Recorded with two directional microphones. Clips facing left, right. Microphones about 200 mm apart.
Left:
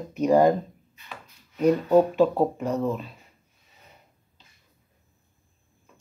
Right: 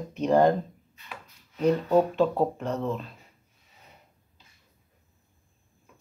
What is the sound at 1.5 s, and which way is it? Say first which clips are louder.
Speech: left 3 dB; 10° left (ahead or behind).